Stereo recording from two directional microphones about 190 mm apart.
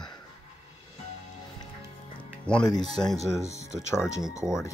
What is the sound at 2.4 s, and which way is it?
Speech, 5° left (ahead or behind).